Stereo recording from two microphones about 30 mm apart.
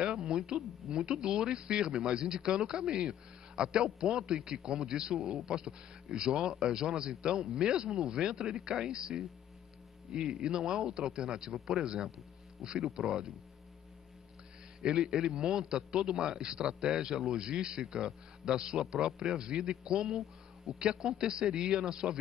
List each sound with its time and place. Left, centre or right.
0.0 s a sound: right
0.8 s a man's voice: right
10.2 s a man's voice: right
14.8 s a man's voice: right